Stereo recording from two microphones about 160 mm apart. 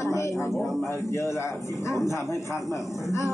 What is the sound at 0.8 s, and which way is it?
Speech, 15° left (ahead or behind).